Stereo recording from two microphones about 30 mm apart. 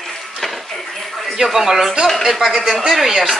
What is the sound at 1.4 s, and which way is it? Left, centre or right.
Speech, centre.